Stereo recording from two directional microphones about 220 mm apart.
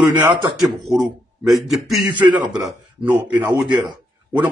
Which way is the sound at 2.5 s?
5° right (ahead or behind).